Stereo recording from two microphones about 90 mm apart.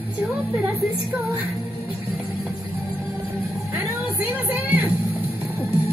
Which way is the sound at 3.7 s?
20° right (ahead or behind).